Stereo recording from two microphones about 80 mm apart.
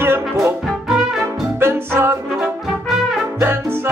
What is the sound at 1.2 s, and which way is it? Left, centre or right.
Music, right.